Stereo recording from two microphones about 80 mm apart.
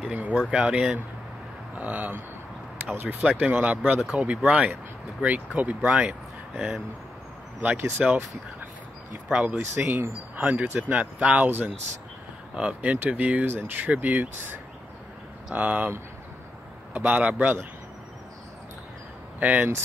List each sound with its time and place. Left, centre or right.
0.1 s speech: centre
8.0 s speech: centre
9.3 s speech: centre
16.9 s speech: centre
19.4 s speech: centre